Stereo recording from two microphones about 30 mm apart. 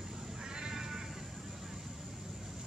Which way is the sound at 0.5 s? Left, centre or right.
Right.